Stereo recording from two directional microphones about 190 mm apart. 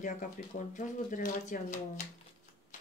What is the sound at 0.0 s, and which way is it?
Speech, 45° left (ahead or behind).